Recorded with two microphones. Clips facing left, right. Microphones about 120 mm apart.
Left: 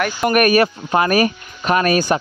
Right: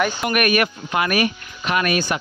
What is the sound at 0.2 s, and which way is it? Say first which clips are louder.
A man's voice: left 5 dB; 40° left (ahead or behind).